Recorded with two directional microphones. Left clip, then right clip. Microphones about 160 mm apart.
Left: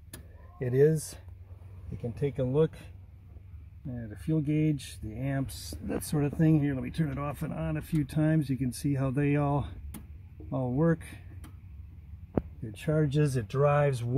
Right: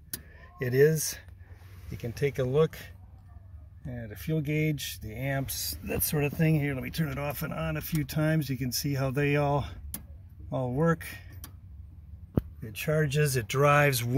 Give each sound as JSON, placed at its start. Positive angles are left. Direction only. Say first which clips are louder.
{"t": 0.6, "sound": "speech", "louder": "right 1 dB", "side_deg": 10}
{"t": 2.0, "sound": "speech", "louder": "right 2 dB", "side_deg": -10}
{"t": 3.9, "sound": "speech", "louder": "right 2 dB", "side_deg": -30}
{"t": 4.4, "sound": "speech", "louder": "even", "side_deg": -10}
{"t": 12.8, "sound": "speech", "louder": "right 1 dB", "side_deg": -10}